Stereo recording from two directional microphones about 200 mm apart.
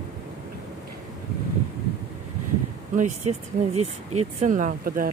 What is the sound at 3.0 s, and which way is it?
Speech, 35° right (ahead or behind).